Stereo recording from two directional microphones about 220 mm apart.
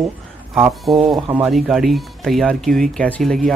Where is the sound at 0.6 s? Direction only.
Centre (ahead or behind).